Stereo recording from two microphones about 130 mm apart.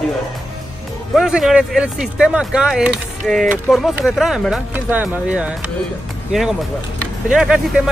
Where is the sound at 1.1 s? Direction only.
5° right (ahead or behind).